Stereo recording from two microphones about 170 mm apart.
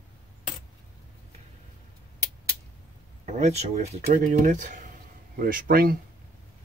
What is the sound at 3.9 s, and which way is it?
Speech, 60° right (ahead or behind).